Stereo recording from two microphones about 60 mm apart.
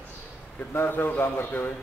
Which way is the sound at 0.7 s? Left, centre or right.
Left.